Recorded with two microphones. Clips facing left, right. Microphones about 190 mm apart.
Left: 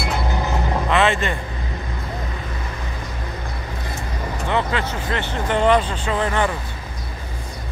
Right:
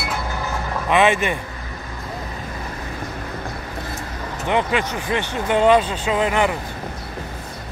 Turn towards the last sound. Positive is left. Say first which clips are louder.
# right 2 dB
turn(degrees=-15)  # may be behind; listen again after turning